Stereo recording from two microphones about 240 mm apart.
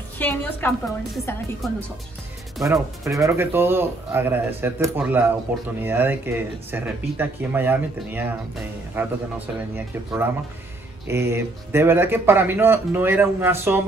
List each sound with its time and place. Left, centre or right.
0.2 s a woman's voice: centre
2.6 s speech: centre